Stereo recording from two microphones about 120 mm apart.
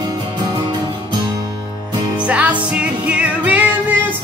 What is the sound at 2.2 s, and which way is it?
Music, 10° right (ahead or behind).